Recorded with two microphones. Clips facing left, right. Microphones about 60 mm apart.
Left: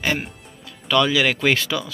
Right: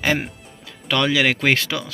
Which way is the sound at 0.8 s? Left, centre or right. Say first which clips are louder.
Left 1 dB; right.